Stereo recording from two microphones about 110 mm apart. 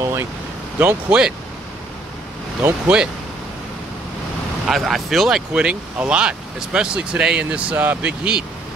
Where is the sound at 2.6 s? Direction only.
10° right (ahead or behind).